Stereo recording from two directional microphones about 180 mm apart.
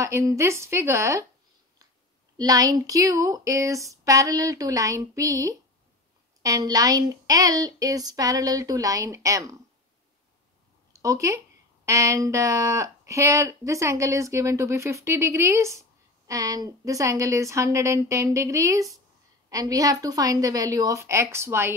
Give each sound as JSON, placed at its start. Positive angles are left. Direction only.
{"t": 0.0, "sound": "speech", "side_deg": -15}
{"t": 2.3, "sound": "speech", "side_deg": -20}
{"t": 10.9, "sound": "speech", "side_deg": -15}